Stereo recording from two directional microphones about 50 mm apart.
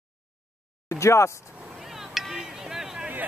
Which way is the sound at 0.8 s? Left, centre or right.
Left.